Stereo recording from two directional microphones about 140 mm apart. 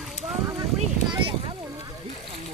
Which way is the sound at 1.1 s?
35° right (ahead or behind).